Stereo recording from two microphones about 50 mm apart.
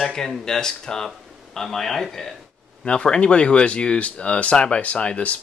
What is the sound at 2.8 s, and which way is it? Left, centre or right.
Speech, centre.